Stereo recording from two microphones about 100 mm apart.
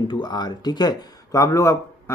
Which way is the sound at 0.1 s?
45° left (ahead or behind).